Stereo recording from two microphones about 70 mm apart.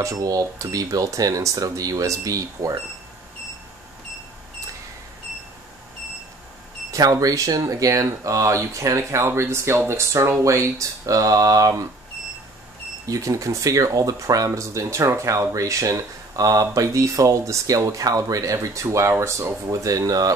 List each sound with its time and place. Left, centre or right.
0.0 s speech: right
6.9 s speech: right
13.0 s speech: right